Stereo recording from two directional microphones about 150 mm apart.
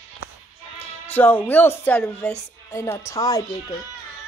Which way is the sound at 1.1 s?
10° left (ahead or behind).